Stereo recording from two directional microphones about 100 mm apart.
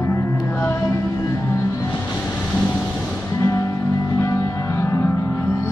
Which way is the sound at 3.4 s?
30° left (ahead or behind).